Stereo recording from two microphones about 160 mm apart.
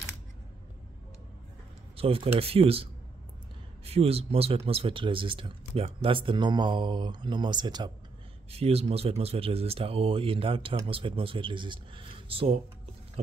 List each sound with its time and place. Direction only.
2.0 s speech: 35° right (ahead or behind)
8.5 s speech: 40° right (ahead or behind)